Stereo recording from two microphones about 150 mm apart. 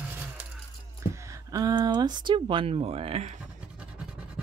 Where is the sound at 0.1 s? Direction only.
10° right (ahead or behind).